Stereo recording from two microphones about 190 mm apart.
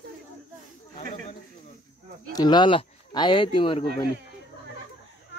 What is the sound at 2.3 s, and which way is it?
Speech, 25° left (ahead or behind).